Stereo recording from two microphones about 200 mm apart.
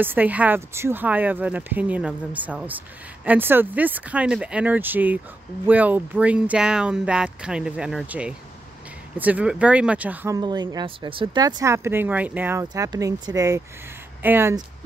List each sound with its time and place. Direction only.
0.0 s speech: 10° right (ahead or behind)